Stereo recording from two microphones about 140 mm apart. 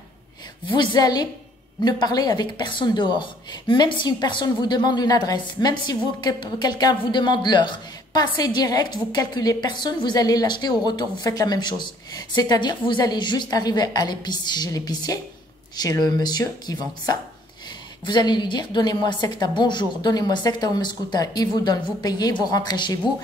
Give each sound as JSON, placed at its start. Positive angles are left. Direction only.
{"t": 0.7, "sound": "speech", "side_deg": 30}
{"t": 18.0, "sound": "speech", "side_deg": 30}